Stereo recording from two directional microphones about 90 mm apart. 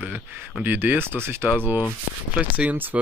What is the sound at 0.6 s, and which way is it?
Speech, 20° right (ahead or behind).